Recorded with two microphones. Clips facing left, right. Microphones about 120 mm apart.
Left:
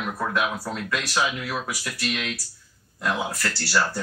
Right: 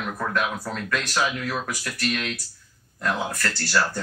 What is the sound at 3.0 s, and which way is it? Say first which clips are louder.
Speech: even; 5° left (ahead or behind).